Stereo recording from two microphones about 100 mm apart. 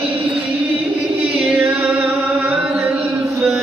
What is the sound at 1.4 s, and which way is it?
Chant, centre (ahead or behind).